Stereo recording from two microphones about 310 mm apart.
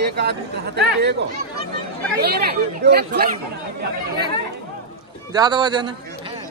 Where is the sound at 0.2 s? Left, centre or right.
Right.